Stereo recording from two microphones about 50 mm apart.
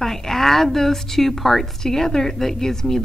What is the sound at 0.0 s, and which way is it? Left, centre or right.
A woman's voice, centre.